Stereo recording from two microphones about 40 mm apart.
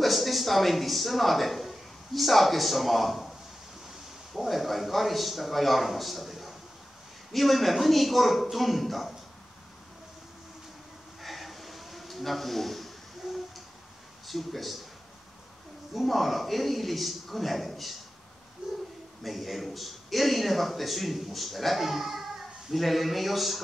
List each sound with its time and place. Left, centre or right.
0.0 s a man's voice: centre
11.1 s a sound: centre
14.2 s speech: centre
15.9 s a man's voice: centre
18.6 s a sound: centre
19.2 s a man's voice: centre